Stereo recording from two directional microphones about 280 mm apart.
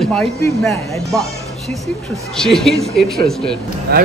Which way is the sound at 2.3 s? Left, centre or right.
Centre.